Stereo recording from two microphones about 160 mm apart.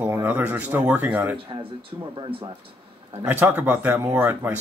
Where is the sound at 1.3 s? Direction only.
30° right (ahead or behind).